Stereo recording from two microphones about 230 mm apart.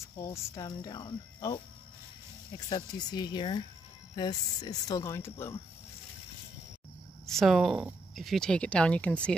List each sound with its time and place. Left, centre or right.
0.2 s speech: centre
7.2 s speech: centre